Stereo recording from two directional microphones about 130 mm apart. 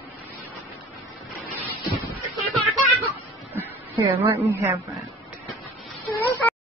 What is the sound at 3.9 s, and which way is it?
Speech, 45° right (ahead or behind).